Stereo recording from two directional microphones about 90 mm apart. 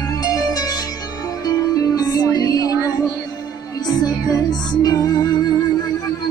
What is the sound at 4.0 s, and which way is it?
Music, 45° left (ahead or behind).